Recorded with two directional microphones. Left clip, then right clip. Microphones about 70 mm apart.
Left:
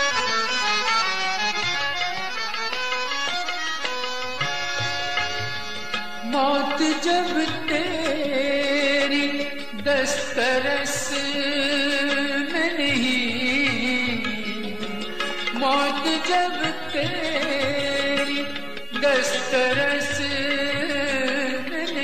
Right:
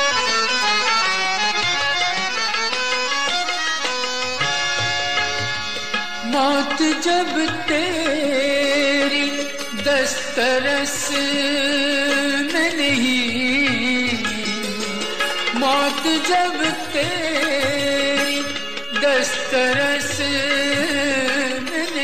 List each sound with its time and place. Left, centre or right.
0.0 s music: left
6.3 s music: left
15.6 s music: left